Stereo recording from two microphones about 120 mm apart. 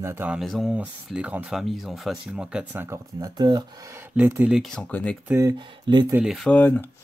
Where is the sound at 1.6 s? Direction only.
Centre (ahead or behind); by 3.0 s 20° right (ahead or behind).